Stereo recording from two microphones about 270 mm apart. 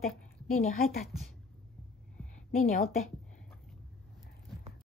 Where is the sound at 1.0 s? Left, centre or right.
Centre.